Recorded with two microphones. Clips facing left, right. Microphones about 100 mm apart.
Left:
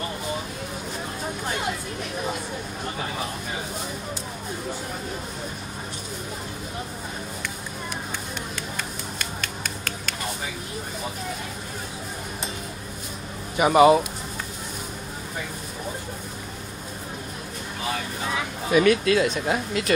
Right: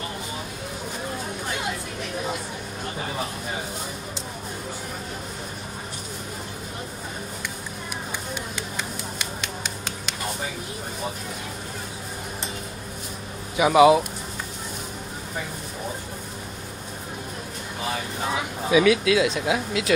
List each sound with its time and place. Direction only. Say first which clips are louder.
9.2 s finger snapping: left 2 dB; 20° right (ahead or behind)
13.6 s speech: even; centre (ahead or behind)
18.7 s speech: even; 5° right (ahead or behind)